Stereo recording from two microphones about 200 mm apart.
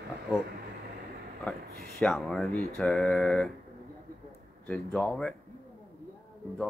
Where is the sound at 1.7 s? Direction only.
50° right (ahead or behind).